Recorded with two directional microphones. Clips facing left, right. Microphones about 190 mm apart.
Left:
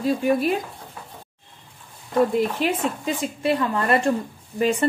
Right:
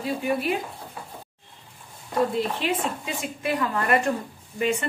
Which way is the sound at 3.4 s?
30° left (ahead or behind).